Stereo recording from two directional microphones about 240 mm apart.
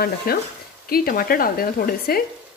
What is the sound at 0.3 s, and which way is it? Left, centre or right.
Speech, left.